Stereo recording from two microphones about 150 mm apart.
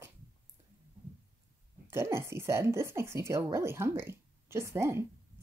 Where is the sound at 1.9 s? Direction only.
15° right (ahead or behind).